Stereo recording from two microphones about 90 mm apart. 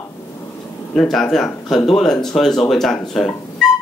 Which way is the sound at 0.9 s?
5° left (ahead or behind).